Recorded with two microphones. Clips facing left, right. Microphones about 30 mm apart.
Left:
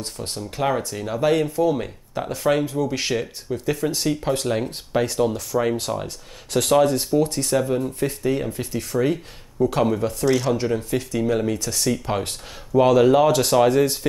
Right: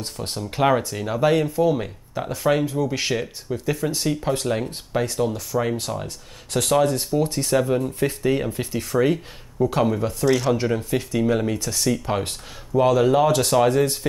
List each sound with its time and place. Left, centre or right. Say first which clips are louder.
0.0 s speech: right 1 dB; centre
0.8 s speech: right 1 dB; centre
7.5 s speech: right 2 dB; centre